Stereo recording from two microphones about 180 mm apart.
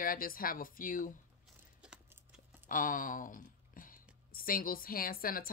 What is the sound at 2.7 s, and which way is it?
Speech, 50° left (ahead or behind).